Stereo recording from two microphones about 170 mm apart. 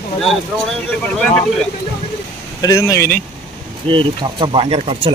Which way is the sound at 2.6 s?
20° left (ahead or behind).